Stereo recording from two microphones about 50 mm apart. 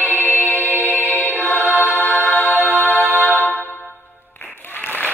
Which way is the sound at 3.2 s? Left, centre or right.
Left.